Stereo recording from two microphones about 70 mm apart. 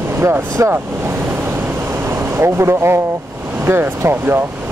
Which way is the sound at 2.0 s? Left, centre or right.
Right.